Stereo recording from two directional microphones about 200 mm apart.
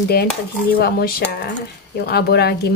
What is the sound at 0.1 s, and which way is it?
A woman's voice, 50° left (ahead or behind).